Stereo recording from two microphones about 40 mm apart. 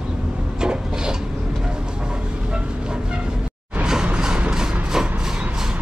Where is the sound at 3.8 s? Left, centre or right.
Centre.